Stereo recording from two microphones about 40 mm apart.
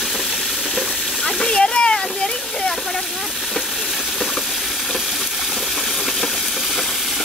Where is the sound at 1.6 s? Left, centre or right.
Centre.